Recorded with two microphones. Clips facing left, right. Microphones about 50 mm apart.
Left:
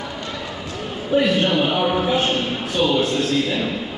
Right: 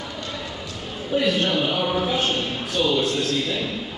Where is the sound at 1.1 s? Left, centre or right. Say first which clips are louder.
Left 4 dB; centre.